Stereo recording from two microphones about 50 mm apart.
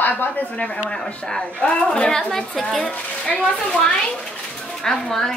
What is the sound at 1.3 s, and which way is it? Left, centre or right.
Speech, centre.